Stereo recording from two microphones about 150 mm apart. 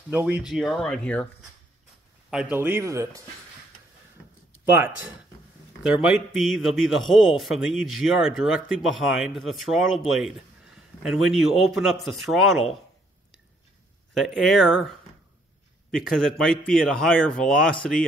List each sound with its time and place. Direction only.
0.1 s a man's voice: 10° right (ahead or behind); by 1.3 s 10° left (ahead or behind)
2.3 s speech: 10° right (ahead or behind)
4.6 s a man's voice: 15° right (ahead or behind)
14.1 s a man's voice: centre (ahead or behind)